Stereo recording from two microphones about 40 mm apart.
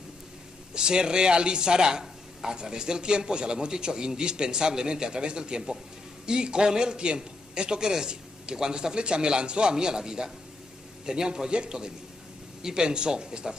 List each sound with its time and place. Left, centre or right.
0.7 s speech: centre